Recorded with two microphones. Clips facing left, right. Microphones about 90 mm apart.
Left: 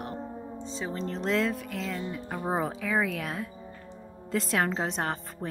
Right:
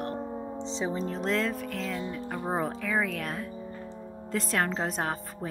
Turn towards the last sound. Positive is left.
turn(degrees=0)  # may be behind; listen again after turning